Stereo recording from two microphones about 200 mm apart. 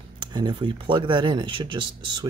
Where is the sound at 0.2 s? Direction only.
20° right (ahead or behind).